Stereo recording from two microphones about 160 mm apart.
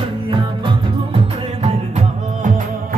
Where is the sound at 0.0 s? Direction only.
35° right (ahead or behind).